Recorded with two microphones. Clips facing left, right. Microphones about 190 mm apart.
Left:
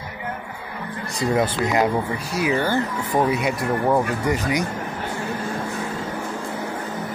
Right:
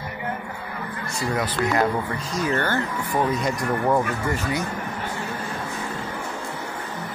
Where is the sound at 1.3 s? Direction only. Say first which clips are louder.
Left 3 dB; 20° left (ahead or behind).